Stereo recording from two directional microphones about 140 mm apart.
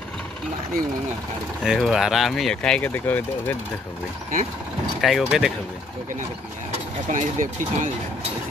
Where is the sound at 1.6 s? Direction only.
Centre (ahead or behind).